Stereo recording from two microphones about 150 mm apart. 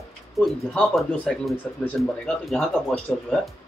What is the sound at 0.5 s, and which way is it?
Speech, 5° left (ahead or behind).